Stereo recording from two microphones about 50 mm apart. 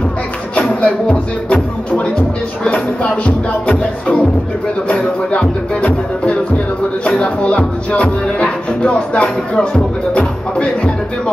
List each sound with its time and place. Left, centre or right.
0.6 s music: left
4.8 s music: left
7.1 s music: left